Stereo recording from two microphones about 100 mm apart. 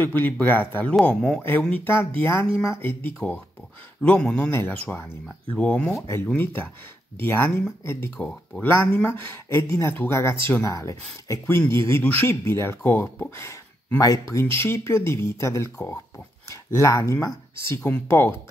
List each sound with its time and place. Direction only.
0.0 s speech: 20° left (ahead or behind)
1.0 s a man's voice: 10° left (ahead or behind)
1.9 s speech: 25° left (ahead or behind)
3.2 s a man's voice: 15° left (ahead or behind)
5.9 s speech: 30° left (ahead or behind)
13.9 s speech: 35° left (ahead or behind)